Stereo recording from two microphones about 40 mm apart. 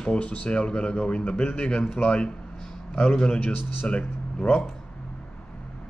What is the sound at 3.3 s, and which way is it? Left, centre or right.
Speech, left.